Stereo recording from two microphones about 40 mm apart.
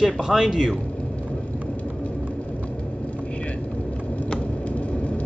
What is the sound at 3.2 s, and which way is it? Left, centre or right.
Vehicle, left.